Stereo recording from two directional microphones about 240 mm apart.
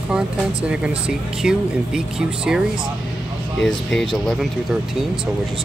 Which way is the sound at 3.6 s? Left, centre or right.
Centre.